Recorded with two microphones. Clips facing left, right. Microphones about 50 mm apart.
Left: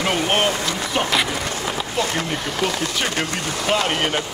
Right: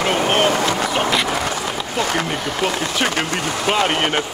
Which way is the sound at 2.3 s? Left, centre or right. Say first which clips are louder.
Right 2 dB; centre.